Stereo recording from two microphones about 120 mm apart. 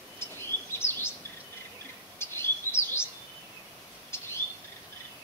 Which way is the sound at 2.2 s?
20° left (ahead or behind).